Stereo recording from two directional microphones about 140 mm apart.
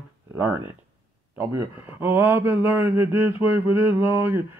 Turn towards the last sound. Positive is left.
turn(degrees=-15)  # may be behind; listen again after turning